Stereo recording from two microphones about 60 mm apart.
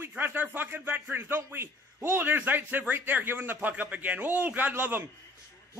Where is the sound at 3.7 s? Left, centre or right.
Right.